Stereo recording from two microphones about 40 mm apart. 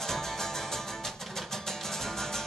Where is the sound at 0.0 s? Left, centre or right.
Centre.